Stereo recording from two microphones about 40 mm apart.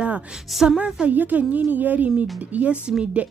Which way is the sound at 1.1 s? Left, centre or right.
Right.